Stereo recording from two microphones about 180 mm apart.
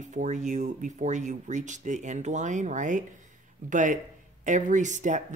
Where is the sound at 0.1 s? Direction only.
40° right (ahead or behind).